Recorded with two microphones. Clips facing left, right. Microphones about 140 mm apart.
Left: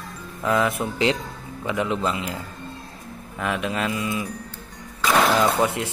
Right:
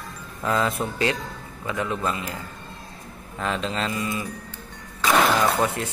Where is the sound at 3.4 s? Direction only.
10° left (ahead or behind).